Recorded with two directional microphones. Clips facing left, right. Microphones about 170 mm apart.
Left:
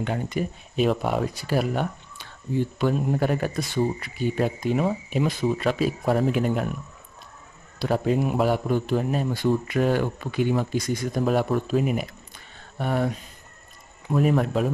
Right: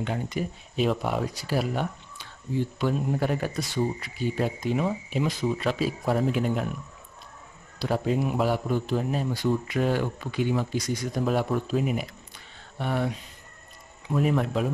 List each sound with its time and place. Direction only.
0.0 s a man's voice: 55° left (ahead or behind)
7.8 s a man's voice: 55° left (ahead or behind)
14.1 s a man's voice: 45° left (ahead or behind)